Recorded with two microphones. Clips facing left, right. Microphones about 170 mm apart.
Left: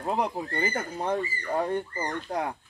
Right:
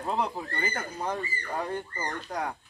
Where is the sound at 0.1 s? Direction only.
20° left (ahead or behind).